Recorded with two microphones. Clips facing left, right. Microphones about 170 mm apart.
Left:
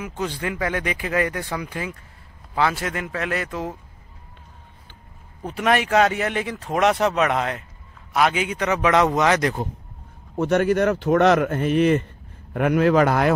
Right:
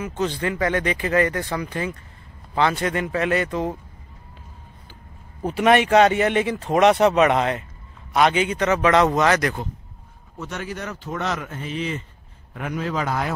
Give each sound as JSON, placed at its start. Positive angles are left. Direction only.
{"t": 0.0, "sound": "speech", "side_deg": 10}
{"t": 5.5, "sound": "speech", "side_deg": 0}
{"t": 10.3, "sound": "speech", "side_deg": 55}